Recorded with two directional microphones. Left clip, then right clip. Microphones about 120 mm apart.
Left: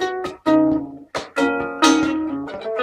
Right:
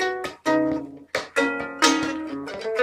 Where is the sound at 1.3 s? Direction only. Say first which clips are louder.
Left 4 dB; 35° right (ahead or behind).